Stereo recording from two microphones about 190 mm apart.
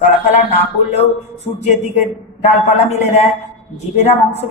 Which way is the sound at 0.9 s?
35° left (ahead or behind).